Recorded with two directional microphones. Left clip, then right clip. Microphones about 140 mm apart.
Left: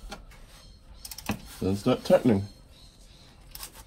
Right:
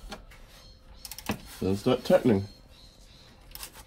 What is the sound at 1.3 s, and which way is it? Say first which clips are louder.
Speech: even; 35° left (ahead or behind).